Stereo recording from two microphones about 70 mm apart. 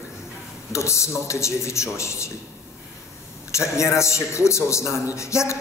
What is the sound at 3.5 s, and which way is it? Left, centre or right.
A man's voice, left.